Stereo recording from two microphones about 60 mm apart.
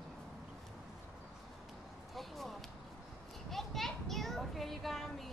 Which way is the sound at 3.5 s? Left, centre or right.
Centre.